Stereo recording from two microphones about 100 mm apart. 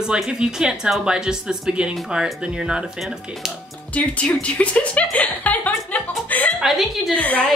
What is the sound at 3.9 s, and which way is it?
Speech, 15° left (ahead or behind).